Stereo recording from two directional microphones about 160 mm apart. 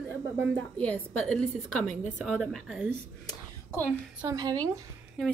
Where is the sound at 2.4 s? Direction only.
5° left (ahead or behind).